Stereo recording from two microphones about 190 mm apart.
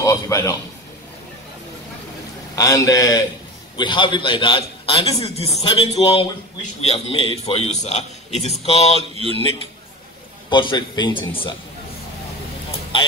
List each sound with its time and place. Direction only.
0.0 s a man's voice: 15° left (ahead or behind)
2.5 s a man's voice: 15° left (ahead or behind); by 9.0 s 30° left (ahead or behind)
10.5 s a man's voice: 25° left (ahead or behind)